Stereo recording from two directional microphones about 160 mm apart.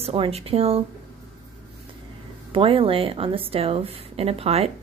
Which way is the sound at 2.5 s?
35° right (ahead or behind).